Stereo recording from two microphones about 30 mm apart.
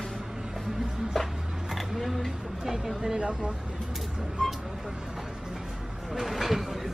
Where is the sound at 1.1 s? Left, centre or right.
Centre.